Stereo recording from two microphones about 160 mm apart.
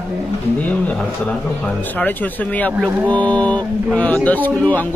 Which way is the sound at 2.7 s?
5° right (ahead or behind).